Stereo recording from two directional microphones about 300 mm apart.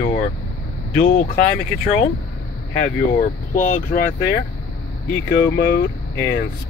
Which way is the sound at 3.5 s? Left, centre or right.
Left.